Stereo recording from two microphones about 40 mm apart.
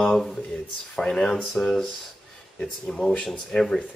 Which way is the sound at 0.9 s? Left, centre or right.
Left.